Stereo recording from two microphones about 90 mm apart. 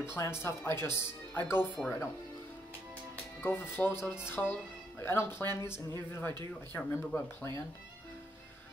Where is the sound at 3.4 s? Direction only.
25° left (ahead or behind).